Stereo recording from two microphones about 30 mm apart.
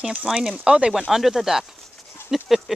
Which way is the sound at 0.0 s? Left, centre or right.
Right.